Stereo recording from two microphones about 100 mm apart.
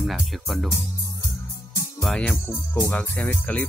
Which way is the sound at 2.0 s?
5° left (ahead or behind).